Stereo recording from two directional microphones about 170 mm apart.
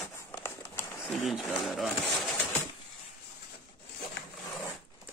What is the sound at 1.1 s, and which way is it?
Speech, centre (ahead or behind).